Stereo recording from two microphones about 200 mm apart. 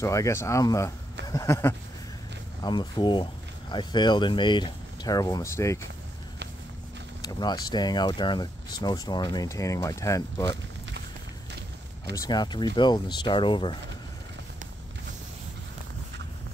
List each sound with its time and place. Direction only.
0.0 s speech: 15° left (ahead or behind)
1.2 s a sound: 15° left (ahead or behind)
2.6 s speech: 20° left (ahead or behind)
7.2 s speech: 20° left (ahead or behind)
12.2 s speech: 20° left (ahead or behind)